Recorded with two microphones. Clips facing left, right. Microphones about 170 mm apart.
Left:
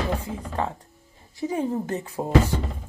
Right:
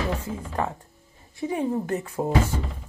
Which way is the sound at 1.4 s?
20° right (ahead or behind).